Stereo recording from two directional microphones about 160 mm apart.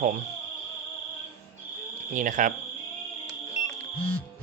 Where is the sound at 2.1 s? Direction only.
55° right (ahead or behind).